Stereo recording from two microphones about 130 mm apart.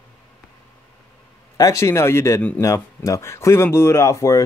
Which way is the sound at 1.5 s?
25° left (ahead or behind).